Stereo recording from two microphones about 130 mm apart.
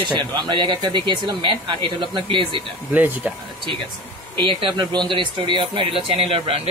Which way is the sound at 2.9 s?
10° right (ahead or behind).